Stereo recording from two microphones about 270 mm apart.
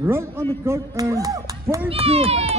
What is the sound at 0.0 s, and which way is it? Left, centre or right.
A man's voice, centre.